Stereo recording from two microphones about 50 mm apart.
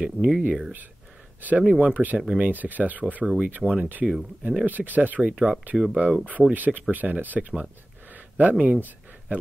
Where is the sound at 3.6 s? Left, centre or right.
Centre.